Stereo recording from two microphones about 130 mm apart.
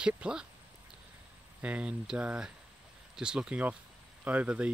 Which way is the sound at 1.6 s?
10° right (ahead or behind).